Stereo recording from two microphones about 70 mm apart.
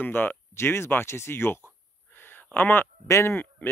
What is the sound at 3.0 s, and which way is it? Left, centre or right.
Speech, left.